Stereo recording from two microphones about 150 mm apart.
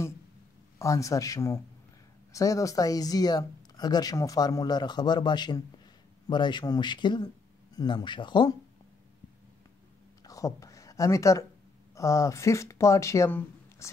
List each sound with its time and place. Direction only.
0.7 s speech: 20° left (ahead or behind)
10.2 s a sound: 20° left (ahead or behind)
11.9 s speech: 20° left (ahead or behind)